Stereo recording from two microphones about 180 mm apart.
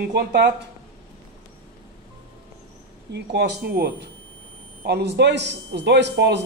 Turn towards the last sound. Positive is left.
turn(degrees=-70)  # may be behind; listen again after turning